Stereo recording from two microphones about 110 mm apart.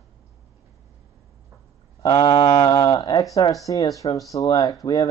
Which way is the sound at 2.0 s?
45° left (ahead or behind).